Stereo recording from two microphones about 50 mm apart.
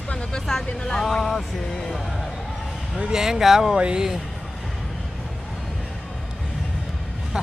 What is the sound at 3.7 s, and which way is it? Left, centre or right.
Speech, right.